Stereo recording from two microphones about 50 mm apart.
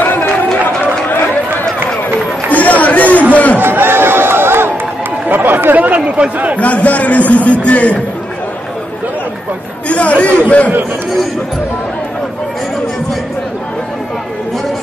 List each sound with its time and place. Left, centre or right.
0.0 s run: left
2.5 s chatter: left
3.5 s music: right
5.3 s chatter: right
6.3 s a sound: right
6.6 s a sound: left
9.8 s chatter: left